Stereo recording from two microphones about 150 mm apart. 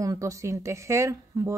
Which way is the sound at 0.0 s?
20° right (ahead or behind).